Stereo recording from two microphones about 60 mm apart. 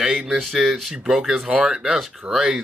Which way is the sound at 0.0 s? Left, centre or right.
Centre.